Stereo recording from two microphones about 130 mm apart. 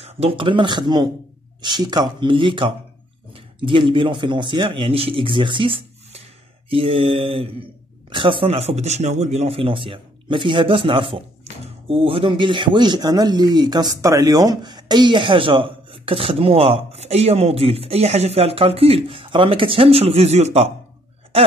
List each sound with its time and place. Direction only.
0.0 s a man's voice: 50° right (ahead or behind)